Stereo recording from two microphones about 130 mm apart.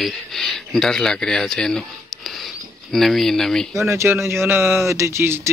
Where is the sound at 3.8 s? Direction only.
20° right (ahead or behind).